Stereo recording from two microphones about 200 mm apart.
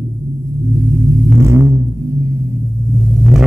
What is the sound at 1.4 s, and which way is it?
Vehicle, 15° right (ahead or behind).